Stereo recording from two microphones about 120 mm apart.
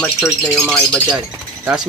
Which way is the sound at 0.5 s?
5° left (ahead or behind).